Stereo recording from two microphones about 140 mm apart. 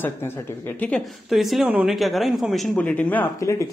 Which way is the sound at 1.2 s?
Centre (ahead or behind).